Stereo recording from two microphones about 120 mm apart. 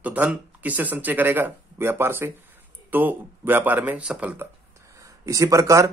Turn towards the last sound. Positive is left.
turn(degrees=-25)  # may be behind; listen again after turning